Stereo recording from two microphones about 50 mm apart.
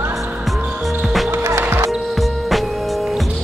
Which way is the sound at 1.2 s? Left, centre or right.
Right.